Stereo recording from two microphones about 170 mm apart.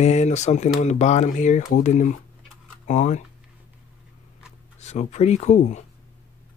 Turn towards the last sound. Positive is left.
turn(degrees=40)  # may be behind; listen again after turning